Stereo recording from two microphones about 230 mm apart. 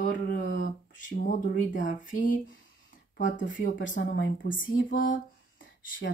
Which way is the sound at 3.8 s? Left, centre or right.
Left.